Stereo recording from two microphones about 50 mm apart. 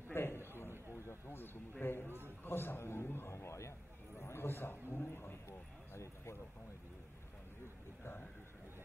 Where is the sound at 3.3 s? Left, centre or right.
Left.